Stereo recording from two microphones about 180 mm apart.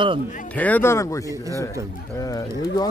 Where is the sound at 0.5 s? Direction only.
10° left (ahead or behind).